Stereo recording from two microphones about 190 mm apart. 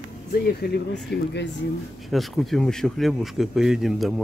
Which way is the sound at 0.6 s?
60° left (ahead or behind).